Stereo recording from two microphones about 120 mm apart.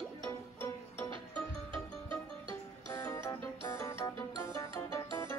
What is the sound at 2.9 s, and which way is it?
Music, 25° left (ahead or behind).